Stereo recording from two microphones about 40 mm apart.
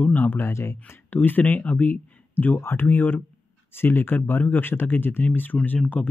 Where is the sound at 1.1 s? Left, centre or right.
Left.